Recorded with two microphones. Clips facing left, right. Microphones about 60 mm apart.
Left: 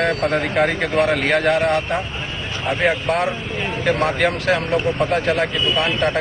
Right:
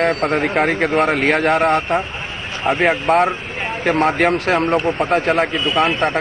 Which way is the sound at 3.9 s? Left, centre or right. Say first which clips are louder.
Right 3 dB; right.